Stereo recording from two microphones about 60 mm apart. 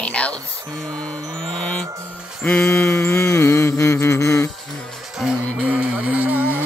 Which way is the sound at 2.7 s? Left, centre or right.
Left.